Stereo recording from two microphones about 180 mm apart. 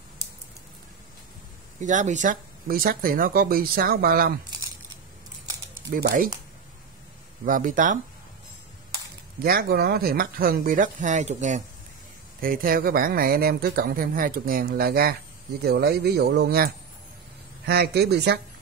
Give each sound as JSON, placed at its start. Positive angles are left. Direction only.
{"t": 1.8, "sound": "speech", "side_deg": -45}
{"t": 5.9, "sound": "speech", "side_deg": -60}
{"t": 7.4, "sound": "speech", "side_deg": -45}
{"t": 9.4, "sound": "speech", "side_deg": -55}
{"t": 12.4, "sound": "speech", "side_deg": -55}